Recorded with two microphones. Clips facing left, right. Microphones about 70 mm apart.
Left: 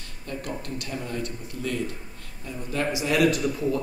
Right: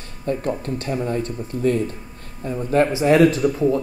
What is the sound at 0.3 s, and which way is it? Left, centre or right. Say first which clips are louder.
A man's voice: right 10 dB; right.